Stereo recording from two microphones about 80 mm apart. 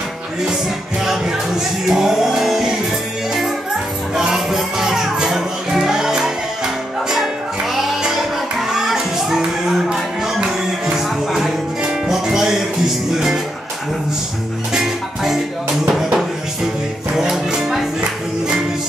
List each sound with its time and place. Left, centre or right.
1.9 s music: centre
4.1 s music: centre
14.7 s music: centre